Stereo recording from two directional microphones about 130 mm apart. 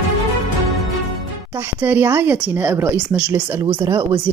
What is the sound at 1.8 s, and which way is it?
A woman's voice, 15° right (ahead or behind).